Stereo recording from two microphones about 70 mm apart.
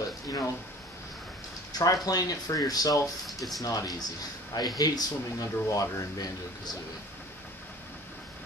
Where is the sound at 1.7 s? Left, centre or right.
Left.